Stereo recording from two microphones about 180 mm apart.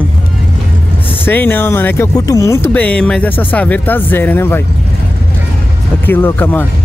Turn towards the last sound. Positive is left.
turn(degrees=10)  # may be behind; listen again after turning